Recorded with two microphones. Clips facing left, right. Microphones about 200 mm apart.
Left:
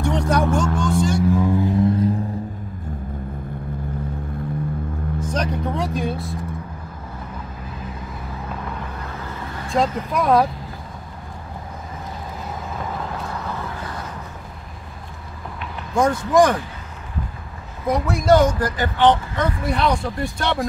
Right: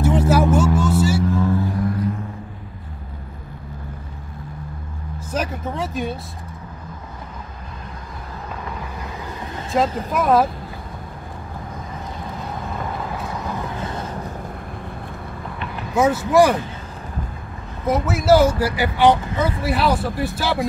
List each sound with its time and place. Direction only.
0.0 s vehicle: 5° right (ahead or behind)
1.3 s music: 15° left (ahead or behind)
5.2 s vehicle: 5° right (ahead or behind)
9.7 s speech: centre (ahead or behind)
13.7 s a sound: 25° right (ahead or behind)
15.9 s speech: 5° right (ahead or behind)
17.8 s speech: 5° right (ahead or behind)